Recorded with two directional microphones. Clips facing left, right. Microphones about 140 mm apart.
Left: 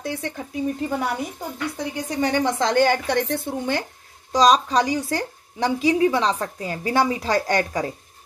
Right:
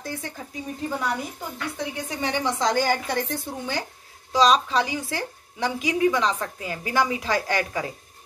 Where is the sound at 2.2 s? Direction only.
50° left (ahead or behind).